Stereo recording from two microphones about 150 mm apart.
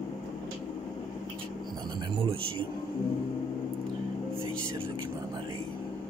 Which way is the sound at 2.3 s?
35° right (ahead or behind).